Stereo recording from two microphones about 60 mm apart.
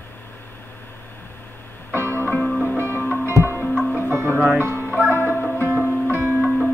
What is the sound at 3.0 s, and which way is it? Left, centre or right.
Music, right.